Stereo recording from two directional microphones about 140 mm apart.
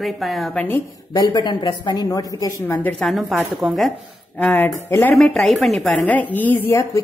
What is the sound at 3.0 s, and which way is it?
Speech, centre (ahead or behind).